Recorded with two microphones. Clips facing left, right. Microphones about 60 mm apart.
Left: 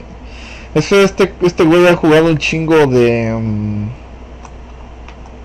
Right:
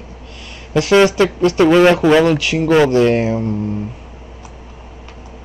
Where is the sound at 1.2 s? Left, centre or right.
Left.